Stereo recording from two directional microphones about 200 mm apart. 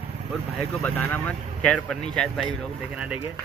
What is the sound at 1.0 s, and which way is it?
Speech, 5° left (ahead or behind).